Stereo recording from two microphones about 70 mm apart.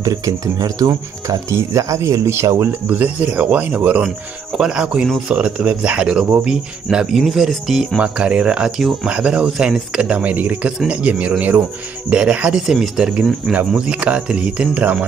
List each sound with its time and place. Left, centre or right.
0.0 s speech: right
2.9 s speech: right; by 8.0 s centre
8.0 s speech: centre